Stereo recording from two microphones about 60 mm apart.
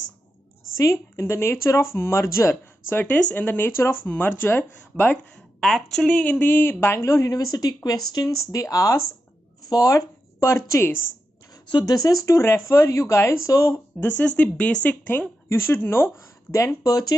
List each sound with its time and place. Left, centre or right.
1.1 s speech: left
2.9 s speech: left
3.2 s speech: centre
3.4 s speech: left
5.1 s a sound: centre
5.9 s speech: centre
6.4 s a woman's voice: left
11.5 s speech: left
12.4 s a woman's voice: left
14.0 s speech: left
15.4 s speech: left
16.5 s speech: left